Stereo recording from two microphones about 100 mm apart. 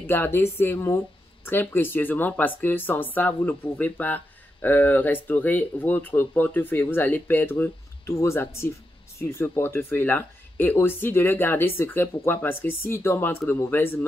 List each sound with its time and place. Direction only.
0.0 s speech: 25° left (ahead or behind)
8.1 s speech: 30° left (ahead or behind)